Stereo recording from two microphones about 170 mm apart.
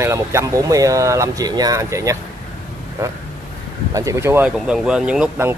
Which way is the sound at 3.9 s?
15° right (ahead or behind).